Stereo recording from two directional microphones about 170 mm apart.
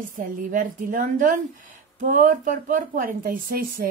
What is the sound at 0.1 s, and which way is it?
A woman's voice, 50° right (ahead or behind).